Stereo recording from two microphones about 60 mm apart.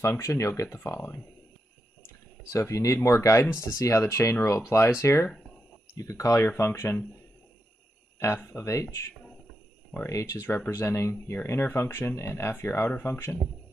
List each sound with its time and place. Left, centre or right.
0.2 s speech: left
2.5 s speech: left
5.9 s speech: left
6.3 s speech: left
8.5 s speech: left
10.0 s speech: left
10.5 s speech: left